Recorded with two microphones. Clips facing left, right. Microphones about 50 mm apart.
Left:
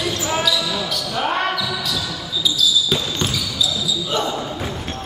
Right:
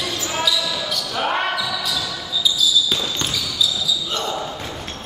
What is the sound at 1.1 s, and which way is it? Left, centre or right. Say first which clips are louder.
Basketball bounce: left 1 dB; centre.